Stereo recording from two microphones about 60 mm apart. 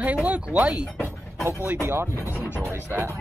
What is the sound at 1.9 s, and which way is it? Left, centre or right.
Speech, right.